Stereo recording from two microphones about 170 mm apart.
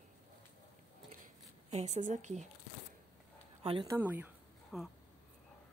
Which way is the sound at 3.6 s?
30° right (ahead or behind).